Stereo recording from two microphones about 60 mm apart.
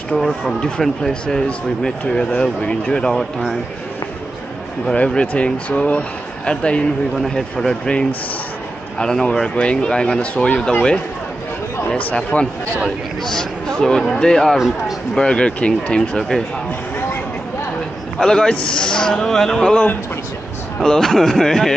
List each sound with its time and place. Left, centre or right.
0.1 s speech: centre
0.6 s speech: centre
4.8 s speech: centre
7.2 s speech: centre
12.3 s speech: left
13.2 s speech: centre
18.2 s speech: centre
19.7 s speech: left
20.8 s speech: centre